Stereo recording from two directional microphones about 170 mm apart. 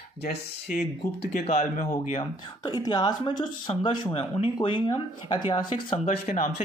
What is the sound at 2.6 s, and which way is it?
Speech, 25° left (ahead or behind).